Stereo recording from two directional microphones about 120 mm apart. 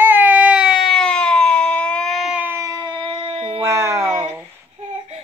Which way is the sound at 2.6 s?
30° right (ahead or behind).